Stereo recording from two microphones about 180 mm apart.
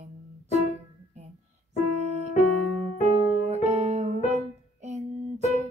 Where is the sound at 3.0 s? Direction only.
35° right (ahead or behind).